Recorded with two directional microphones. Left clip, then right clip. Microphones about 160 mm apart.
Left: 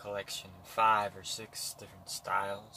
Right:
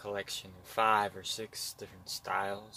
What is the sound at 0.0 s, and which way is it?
Speech, 60° right (ahead or behind).